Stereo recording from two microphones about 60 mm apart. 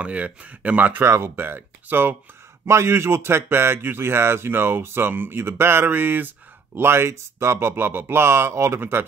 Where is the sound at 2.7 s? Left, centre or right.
Right.